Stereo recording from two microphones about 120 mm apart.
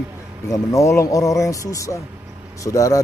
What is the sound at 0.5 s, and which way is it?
Speech, 25° left (ahead or behind).